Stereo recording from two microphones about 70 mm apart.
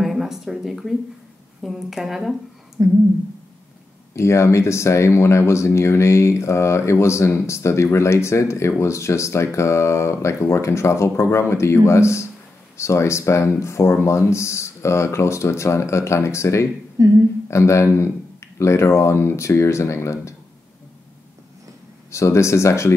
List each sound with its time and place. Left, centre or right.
0.0 s a sound: centre
1.6 s speech: centre
2.8 s speech: right
4.1 s speech: left
17.0 s speech: right
17.5 s speech: left
22.1 s speech: left